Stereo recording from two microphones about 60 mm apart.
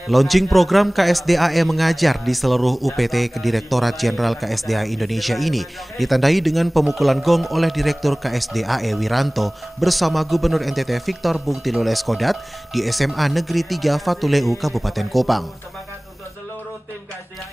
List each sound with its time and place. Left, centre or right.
0.1 s speech: centre